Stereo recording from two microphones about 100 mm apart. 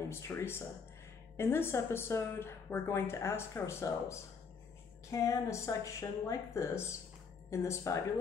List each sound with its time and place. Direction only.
0.1 s a woman's voice: 25° left (ahead or behind)